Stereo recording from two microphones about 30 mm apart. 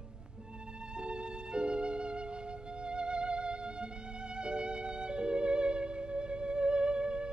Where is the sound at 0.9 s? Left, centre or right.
Right.